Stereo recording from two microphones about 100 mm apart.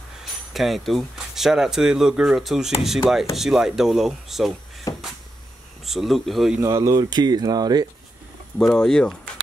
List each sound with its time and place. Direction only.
0.2 s speech: centre (ahead or behind)
4.9 s a sound: 35° left (ahead or behind)
5.9 s speech: centre (ahead or behind)
6.6 s speech: 30° right (ahead or behind)
8.5 s speech: 5° left (ahead or behind)